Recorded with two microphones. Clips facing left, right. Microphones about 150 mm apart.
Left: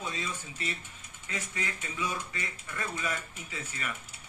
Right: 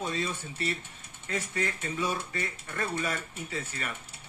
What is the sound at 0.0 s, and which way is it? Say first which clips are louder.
Speech: right 5 dB; 30° right (ahead or behind).